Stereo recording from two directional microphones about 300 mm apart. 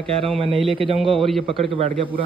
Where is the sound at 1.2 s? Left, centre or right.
Centre.